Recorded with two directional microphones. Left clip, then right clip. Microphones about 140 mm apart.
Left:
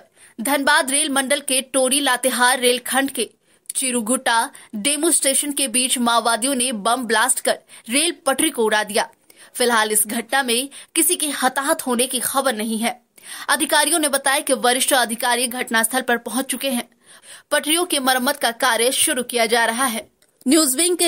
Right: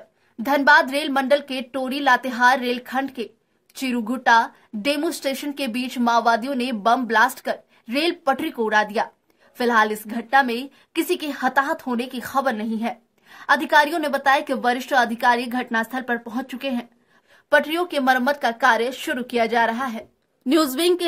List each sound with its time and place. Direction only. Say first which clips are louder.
0.6 s a woman's voice: right 2 dB; 25° left (ahead or behind)